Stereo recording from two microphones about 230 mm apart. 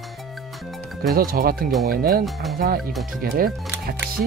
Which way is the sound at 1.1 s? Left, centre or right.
Right.